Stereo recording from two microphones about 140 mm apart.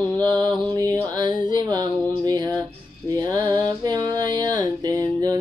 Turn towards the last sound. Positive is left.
turn(degrees=-30)  # may be behind; listen again after turning